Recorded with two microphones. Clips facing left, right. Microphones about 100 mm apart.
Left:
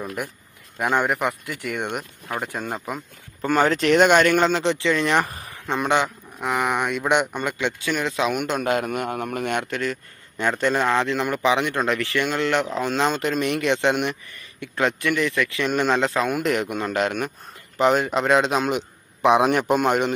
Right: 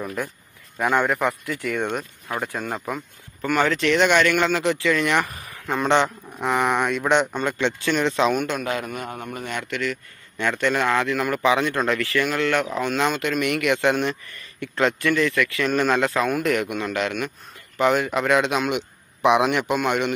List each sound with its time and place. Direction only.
0.7 s a man's voice: 15° left (ahead or behind)
3.4 s speech: 35° left (ahead or behind)
4.5 s a man's voice: 25° left (ahead or behind)
5.8 s speech: 10° left (ahead or behind)
8.6 s a man's voice: 50° left (ahead or behind); by 9.7 s 70° left (ahead or behind)
9.7 s a man's voice: 35° left (ahead or behind); by 16.6 s 20° left (ahead or behind)
16.6 s speech: 35° left (ahead or behind)
17.7 s a man's voice: 30° left (ahead or behind)